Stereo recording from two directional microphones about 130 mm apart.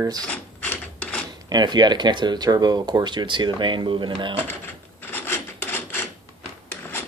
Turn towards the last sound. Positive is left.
turn(degrees=15)  # may be behind; listen again after turning